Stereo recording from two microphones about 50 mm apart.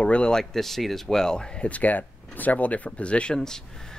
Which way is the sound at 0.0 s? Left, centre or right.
Left.